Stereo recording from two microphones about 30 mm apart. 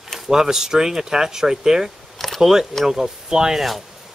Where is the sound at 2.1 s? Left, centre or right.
Centre.